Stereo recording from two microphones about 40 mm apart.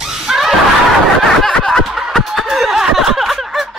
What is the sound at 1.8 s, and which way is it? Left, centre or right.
Snicker, centre.